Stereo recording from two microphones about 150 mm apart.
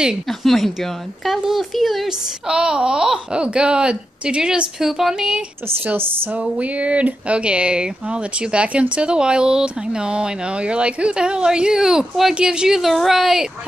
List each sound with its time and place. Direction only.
0.0 s speech: centre (ahead or behind)
5.9 s speech: 15° right (ahead or behind)